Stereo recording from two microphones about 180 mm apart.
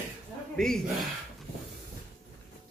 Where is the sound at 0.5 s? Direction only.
5° left (ahead or behind).